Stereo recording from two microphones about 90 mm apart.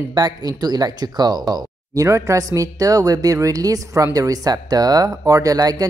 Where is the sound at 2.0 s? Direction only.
35° right (ahead or behind).